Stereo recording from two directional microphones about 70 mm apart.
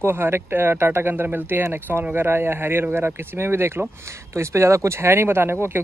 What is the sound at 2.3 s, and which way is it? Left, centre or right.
Speech, right.